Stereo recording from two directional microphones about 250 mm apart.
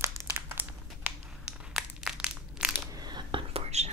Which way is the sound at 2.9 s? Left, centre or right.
Centre.